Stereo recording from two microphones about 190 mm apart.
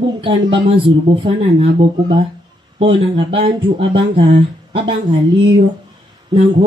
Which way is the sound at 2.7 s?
30° right (ahead or behind).